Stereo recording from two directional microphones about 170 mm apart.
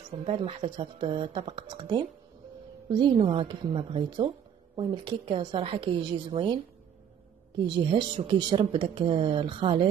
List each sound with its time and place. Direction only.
0.2 s speech: 35° right (ahead or behind)
7.7 s speech: 30° right (ahead or behind)